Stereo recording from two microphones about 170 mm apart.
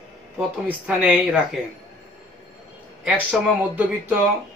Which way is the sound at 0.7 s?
5° right (ahead or behind).